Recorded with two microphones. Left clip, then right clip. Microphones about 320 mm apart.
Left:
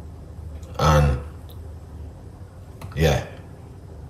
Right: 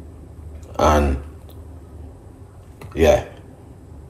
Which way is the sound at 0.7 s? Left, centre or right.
Centre.